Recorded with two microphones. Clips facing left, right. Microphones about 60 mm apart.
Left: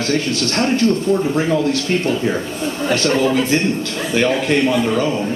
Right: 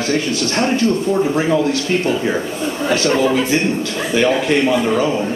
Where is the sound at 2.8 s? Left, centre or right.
Centre.